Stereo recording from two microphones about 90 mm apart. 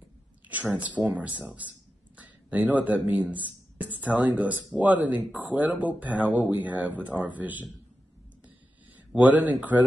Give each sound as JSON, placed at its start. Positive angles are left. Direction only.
{"t": 0.5, "sound": "speech", "side_deg": -15}
{"t": 8.9, "sound": "speech", "side_deg": -15}